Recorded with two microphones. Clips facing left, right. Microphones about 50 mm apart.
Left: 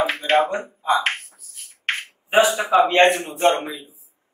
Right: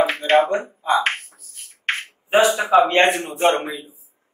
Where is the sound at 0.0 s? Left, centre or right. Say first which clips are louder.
Right 2 dB; centre.